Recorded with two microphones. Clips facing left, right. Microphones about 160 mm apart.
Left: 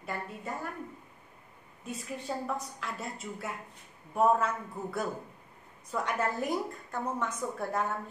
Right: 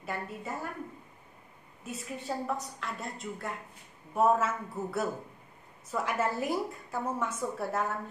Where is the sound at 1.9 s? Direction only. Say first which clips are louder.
Even; centre (ahead or behind).